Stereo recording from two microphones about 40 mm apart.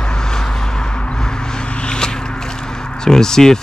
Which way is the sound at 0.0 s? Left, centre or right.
Centre.